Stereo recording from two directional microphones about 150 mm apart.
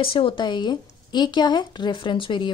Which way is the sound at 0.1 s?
35° left (ahead or behind).